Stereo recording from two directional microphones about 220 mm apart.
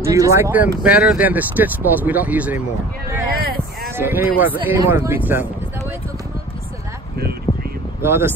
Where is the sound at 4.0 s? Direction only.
10° right (ahead or behind).